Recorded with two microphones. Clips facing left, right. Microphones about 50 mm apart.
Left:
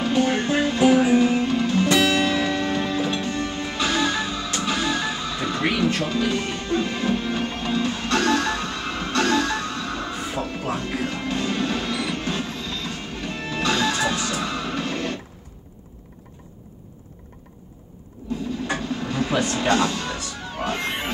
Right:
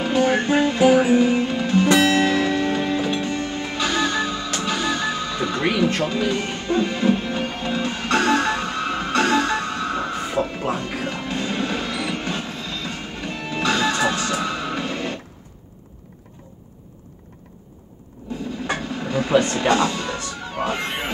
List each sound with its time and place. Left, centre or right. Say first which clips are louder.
0.0 s music: right 2 dB; centre
1.9 s music: right 4 dB; right
2.3 s music: right 2 dB; centre
6.0 s music: right 1 dB; centre
10.4 s music: right 2 dB; centre
18.8 s a sound: right 1 dB; centre
19.3 s music: right 6 dB; right
19.6 s music: right 2 dB; centre